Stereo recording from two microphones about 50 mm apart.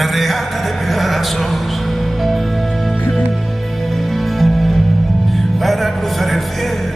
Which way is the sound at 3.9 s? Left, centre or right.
Centre.